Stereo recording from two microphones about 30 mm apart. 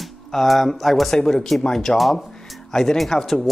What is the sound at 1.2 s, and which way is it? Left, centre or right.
Speech, centre.